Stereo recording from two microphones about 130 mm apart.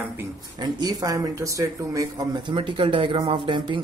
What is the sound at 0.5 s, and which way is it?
Speech, 30° right (ahead or behind).